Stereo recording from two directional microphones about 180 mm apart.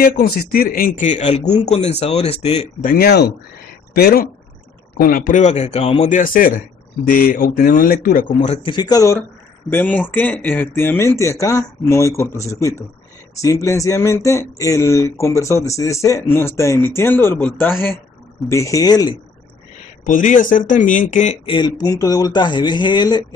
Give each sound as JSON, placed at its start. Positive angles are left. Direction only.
{"t": 0.0, "sound": "speech", "side_deg": 60}
{"t": 2.9, "sound": "speech", "side_deg": 60}
{"t": 8.6, "sound": "speech", "side_deg": 25}
{"t": 20.1, "sound": "speech", "side_deg": 45}
{"t": 21.5, "sound": "speech", "side_deg": 25}